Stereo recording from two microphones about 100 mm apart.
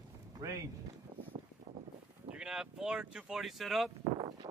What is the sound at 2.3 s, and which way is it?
Speech, 5° right (ahead or behind).